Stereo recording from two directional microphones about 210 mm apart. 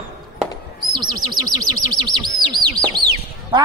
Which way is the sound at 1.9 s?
20° right (ahead or behind).